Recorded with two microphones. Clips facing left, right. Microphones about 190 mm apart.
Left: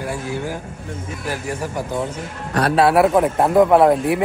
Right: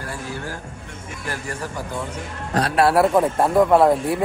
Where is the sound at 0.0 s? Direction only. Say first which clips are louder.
Left 6 dB; 15° left (ahead or behind).